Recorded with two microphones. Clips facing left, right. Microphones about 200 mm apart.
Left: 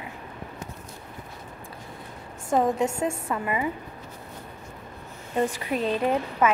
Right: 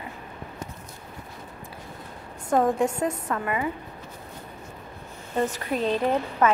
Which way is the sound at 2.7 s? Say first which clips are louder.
Right 1 dB; 25° left (ahead or behind).